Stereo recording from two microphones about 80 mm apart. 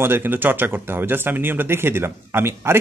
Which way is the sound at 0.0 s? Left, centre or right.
Right.